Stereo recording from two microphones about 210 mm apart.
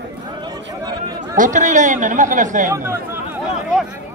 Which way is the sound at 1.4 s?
35° right (ahead or behind).